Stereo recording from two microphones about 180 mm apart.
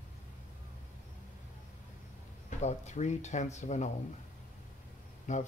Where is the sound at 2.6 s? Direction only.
40° left (ahead or behind).